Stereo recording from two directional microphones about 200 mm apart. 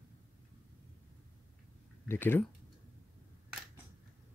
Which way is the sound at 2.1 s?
10° left (ahead or behind).